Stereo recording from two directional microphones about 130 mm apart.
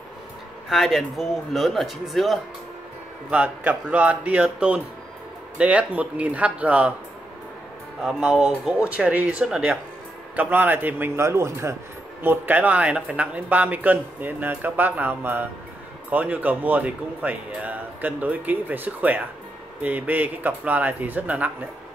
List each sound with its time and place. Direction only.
0.7 s speech: centre (ahead or behind)
3.3 s speech: 10° right (ahead or behind)
8.0 s speech: 5° right (ahead or behind)